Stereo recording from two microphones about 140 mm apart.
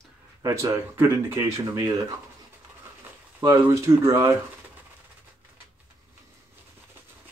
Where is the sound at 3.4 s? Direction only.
20° right (ahead or behind).